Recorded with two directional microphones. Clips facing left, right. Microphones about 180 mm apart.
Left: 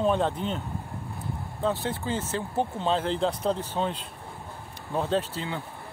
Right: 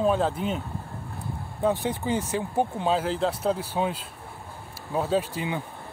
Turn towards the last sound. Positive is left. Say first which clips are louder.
# right 2 dB
turn(degrees=-15)  # may be behind; listen again after turning